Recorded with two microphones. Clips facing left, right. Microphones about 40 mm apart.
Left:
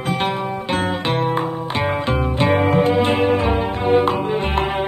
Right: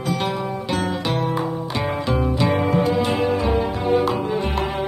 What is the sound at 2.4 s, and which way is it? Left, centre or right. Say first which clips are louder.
Music: left 6 dB; left.